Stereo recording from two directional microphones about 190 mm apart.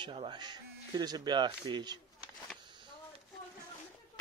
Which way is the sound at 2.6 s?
25° right (ahead or behind).